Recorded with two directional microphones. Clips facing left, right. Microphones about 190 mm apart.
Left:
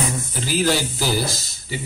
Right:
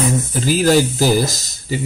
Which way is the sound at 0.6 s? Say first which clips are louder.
Right 11 dB; 45° right (ahead or behind).